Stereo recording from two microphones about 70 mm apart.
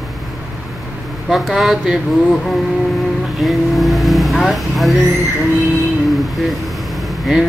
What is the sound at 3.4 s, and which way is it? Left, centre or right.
Speech, centre.